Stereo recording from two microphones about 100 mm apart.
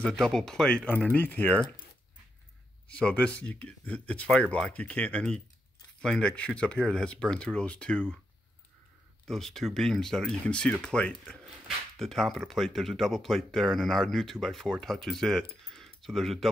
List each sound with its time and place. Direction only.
0.0 s speech: 5° left (ahead or behind)
2.9 s speech: 10° left (ahead or behind)
9.3 s speech: 5° left (ahead or behind)
15.7 s a sound: 5° left (ahead or behind)